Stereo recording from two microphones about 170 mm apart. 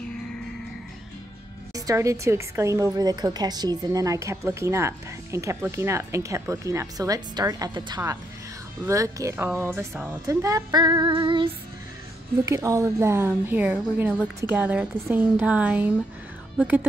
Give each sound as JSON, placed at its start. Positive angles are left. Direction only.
{"t": 1.9, "sound": "a woman's voice", "side_deg": -15}
{"t": 12.4, "sound": "a woman's voice", "side_deg": -20}